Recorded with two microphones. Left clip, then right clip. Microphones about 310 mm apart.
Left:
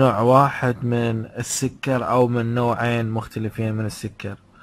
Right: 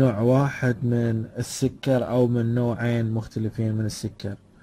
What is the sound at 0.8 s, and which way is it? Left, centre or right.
Speech, left.